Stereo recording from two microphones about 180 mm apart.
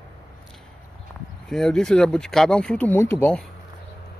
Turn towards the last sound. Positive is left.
turn(degrees=10)  # may be behind; listen again after turning